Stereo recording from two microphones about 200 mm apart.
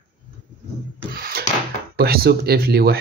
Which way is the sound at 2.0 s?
50° right (ahead or behind).